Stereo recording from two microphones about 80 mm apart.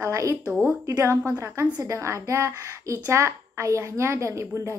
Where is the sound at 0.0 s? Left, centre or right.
Right.